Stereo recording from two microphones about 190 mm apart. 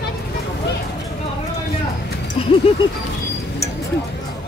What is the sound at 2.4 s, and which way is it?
Vehicle, 30° left (ahead or behind).